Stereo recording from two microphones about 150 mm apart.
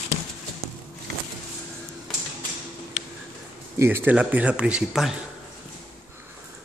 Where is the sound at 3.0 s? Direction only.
60° left (ahead or behind).